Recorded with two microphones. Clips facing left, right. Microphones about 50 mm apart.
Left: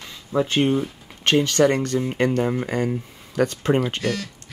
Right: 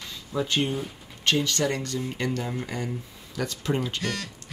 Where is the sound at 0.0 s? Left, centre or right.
Left.